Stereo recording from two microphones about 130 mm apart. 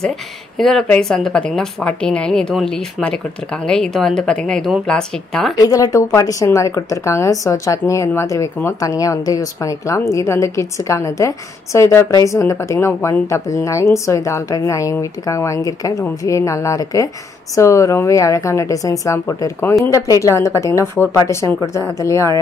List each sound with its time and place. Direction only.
0.6 s a woman's voice: 5° left (ahead or behind)
5.6 s a woman's voice: 25° left (ahead or behind)